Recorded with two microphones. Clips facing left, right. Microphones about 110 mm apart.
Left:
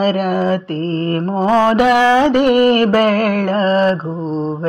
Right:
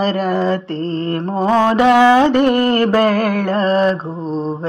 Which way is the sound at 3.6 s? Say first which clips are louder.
Left 1 dB; 50° left (ahead or behind).